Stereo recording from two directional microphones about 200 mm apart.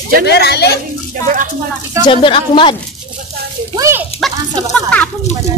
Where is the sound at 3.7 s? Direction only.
15° right (ahead or behind).